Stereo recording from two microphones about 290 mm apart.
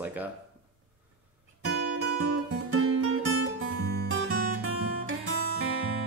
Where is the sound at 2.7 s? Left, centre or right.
Right.